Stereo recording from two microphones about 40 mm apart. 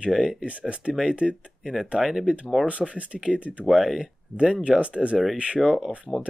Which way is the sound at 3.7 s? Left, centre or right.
Centre.